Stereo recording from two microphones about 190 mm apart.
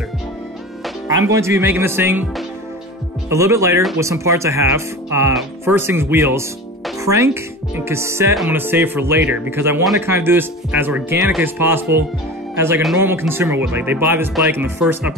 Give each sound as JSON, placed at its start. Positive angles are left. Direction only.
{"t": 1.0, "sound": "speech", "side_deg": -15}
{"t": 3.3, "sound": "speech", "side_deg": -15}
{"t": 7.0, "sound": "music", "side_deg": -15}
{"t": 7.7, "sound": "speech", "side_deg": -15}